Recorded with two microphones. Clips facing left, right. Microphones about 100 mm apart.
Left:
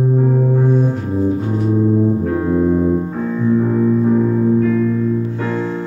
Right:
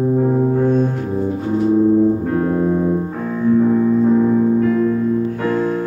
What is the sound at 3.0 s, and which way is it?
Music, 5° right (ahead or behind).